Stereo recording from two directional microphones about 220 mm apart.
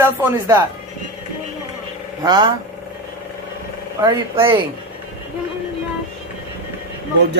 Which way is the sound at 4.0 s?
15° right (ahead or behind).